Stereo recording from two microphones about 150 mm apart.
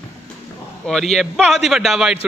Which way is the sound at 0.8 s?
Centre (ahead or behind).